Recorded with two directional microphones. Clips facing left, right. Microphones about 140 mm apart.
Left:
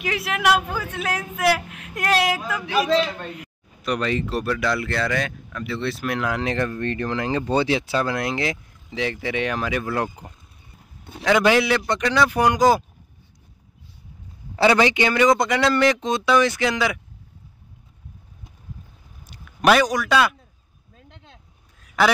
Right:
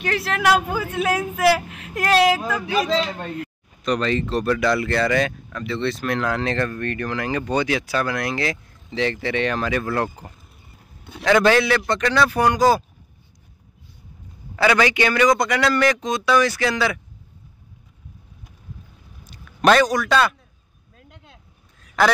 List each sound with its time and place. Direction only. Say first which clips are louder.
0.0 s speech: right 1 dB; centre (ahead or behind); by 8.5 s 20° left (ahead or behind)
8.9 s speech: right 3 dB; 10° left (ahead or behind)
11.2 s speech: right 1 dB; 10° left (ahead or behind)
14.5 s a man's voice: left 1 dB; 25° left (ahead or behind)
19.3 s a man's voice: right 1 dB; 10° left (ahead or behind)